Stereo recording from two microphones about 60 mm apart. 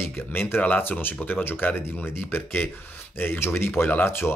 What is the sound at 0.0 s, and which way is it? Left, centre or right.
Speech, left.